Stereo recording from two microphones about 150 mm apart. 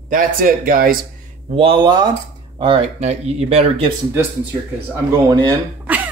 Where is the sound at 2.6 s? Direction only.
40° right (ahead or behind).